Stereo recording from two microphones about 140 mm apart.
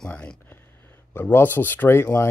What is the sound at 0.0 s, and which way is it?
Speech, 5° left (ahead or behind).